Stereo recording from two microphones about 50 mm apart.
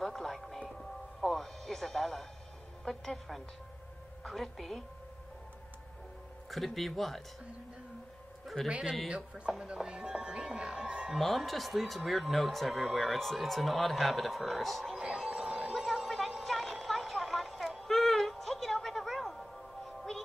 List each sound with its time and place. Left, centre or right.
0.0 s music: centre
2.9 s speech: centre
6.5 s speech: centre
8.6 s speech: right
11.1 s speech: centre
15.0 s music: centre